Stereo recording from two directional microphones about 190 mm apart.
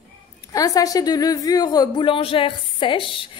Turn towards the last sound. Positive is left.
turn(degrees=25)  # may be behind; listen again after turning